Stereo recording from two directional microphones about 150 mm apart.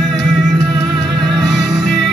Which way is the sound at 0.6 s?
20° right (ahead or behind).